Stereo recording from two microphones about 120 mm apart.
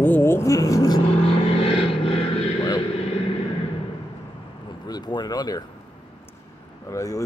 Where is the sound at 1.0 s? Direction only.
55° left (ahead or behind).